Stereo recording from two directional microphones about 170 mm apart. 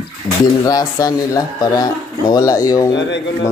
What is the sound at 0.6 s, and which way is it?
Speech, 20° left (ahead or behind).